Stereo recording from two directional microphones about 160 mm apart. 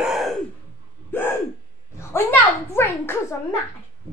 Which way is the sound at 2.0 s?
15° left (ahead or behind).